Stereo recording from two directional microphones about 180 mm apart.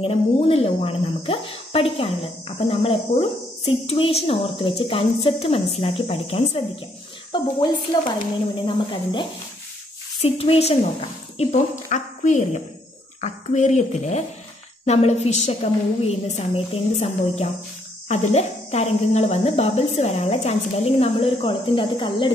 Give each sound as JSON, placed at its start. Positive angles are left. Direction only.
{"t": 0.0, "sound": "speech", "side_deg": 35}
{"t": 10.2, "sound": "speech", "side_deg": 35}